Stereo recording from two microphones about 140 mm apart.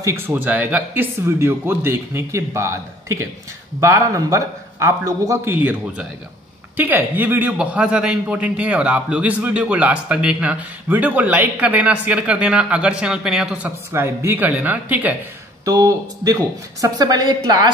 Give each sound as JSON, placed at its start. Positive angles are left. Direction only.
{"t": 0.0, "sound": "a man's voice", "side_deg": -15}
{"t": 15.6, "sound": "a man's voice", "side_deg": -25}